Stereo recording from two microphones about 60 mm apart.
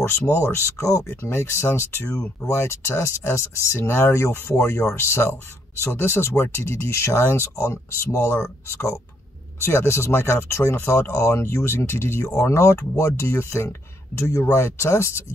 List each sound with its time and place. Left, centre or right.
0.0 s speech: left
1.3 s speech: left
12.3 s speech: left